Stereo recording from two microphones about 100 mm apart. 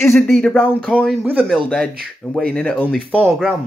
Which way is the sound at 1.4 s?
5° left (ahead or behind).